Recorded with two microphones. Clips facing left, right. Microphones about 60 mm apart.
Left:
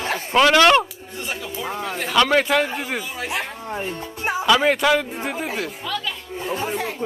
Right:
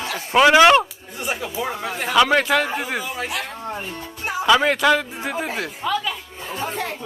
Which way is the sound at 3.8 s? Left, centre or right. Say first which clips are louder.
Left 3 dB; left.